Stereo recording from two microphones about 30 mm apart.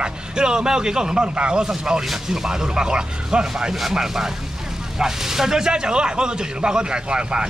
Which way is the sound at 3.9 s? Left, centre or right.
Centre.